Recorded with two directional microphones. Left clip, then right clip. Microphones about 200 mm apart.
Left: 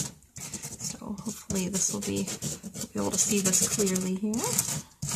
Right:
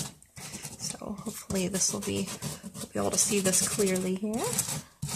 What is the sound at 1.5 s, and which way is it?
Speech, 35° right (ahead or behind).